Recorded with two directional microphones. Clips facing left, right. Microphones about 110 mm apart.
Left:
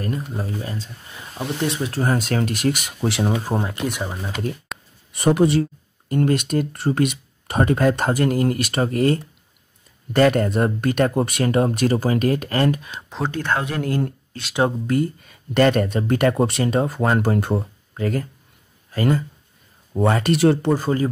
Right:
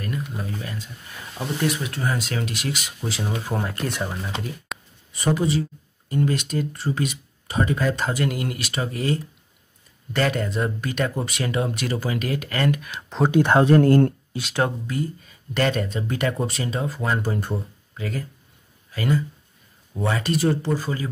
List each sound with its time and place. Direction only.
0.0 s speech: 35° left (ahead or behind); by 3.3 s 55° left (ahead or behind)
3.3 s speech: 30° left (ahead or behind)
3.6 s speech: 15° left (ahead or behind)
4.7 s a sound: centre (ahead or behind)
5.1 s speech: 60° left (ahead or behind); by 13.0 s 30° left (ahead or behind)
13.3 s speech: 15° right (ahead or behind)
13.6 s speech: 40° right (ahead or behind)
14.3 s speech: 15° right (ahead or behind)
14.9 s speech: 55° left (ahead or behind); by 17.6 s 80° left
17.6 s speech: 50° left (ahead or behind)
20.3 s speech: 65° left (ahead or behind); by 21.1 s 50° left (ahead or behind)